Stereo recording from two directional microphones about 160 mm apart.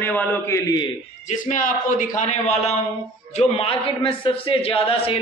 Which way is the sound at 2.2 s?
45° left (ahead or behind).